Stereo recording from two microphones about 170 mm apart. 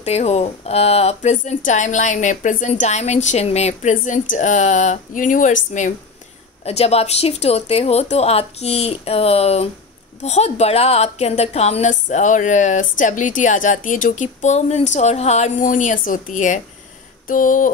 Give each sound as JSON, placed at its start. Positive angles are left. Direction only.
{"t": 0.0, "sound": "a woman's voice", "side_deg": 40}
{"t": 6.6, "sound": "a woman's voice", "side_deg": 40}